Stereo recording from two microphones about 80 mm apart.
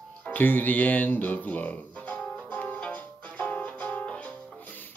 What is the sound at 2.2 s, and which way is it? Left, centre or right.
Music, centre.